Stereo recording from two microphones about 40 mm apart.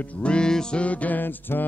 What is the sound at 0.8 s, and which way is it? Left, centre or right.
Music, left.